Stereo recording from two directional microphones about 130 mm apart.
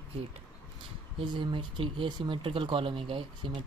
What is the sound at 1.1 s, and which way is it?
Speech, 40° right (ahead or behind).